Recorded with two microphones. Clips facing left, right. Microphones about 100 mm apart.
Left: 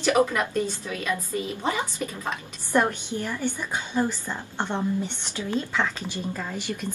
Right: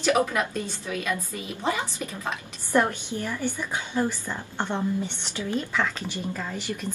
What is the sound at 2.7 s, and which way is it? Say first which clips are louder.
Speech: even; 15° left (ahead or behind).